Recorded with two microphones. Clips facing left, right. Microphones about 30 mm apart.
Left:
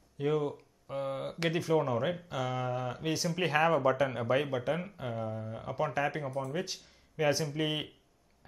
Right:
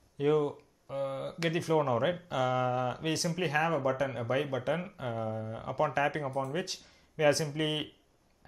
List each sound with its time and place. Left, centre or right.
0.2 s speech: centre
1.8 s speech: centre
3.3 s speech: centre
4.6 s speech: centre